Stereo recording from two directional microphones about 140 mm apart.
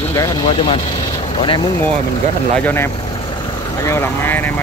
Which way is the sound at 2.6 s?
15° left (ahead or behind).